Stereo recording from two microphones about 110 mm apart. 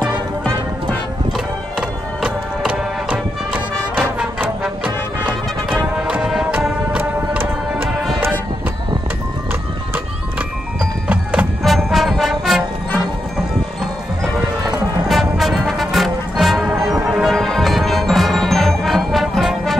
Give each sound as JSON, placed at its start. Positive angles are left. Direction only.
{"t": 1.8, "sound": "music", "side_deg": -10}
{"t": 5.9, "sound": "music", "side_deg": -10}
{"t": 11.6, "sound": "music", "side_deg": 0}
{"t": 14.6, "sound": "music", "side_deg": -35}
{"t": 15.0, "sound": "music", "side_deg": 0}